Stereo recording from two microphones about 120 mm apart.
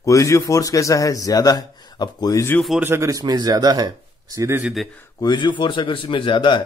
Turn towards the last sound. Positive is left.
turn(degrees=40)  # may be behind; listen again after turning